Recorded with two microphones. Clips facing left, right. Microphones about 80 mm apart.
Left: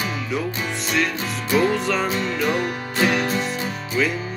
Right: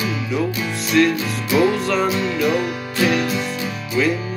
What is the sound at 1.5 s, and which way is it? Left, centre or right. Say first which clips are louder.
Music: right 2 dB; left.